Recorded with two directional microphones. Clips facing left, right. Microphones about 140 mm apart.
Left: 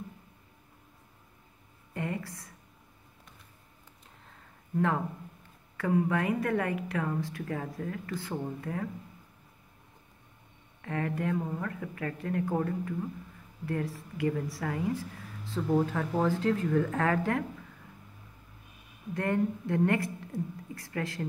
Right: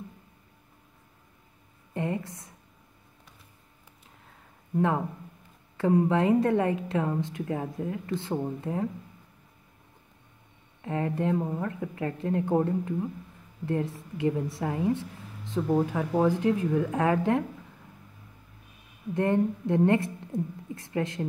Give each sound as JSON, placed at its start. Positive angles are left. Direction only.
{"t": 2.0, "sound": "speech", "side_deg": -20}
{"t": 4.7, "sound": "a woman's voice", "side_deg": -20}
{"t": 10.8, "sound": "a woman's voice", "side_deg": -20}
{"t": 19.1, "sound": "a woman's voice", "side_deg": -20}